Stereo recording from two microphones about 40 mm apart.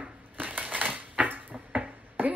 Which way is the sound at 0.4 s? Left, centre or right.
Right.